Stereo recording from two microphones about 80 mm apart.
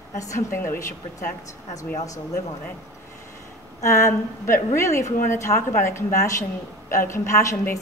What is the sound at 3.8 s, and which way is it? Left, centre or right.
A woman's voice, left.